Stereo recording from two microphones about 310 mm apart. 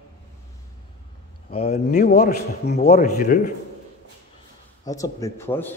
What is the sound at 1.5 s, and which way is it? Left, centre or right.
Speech, left.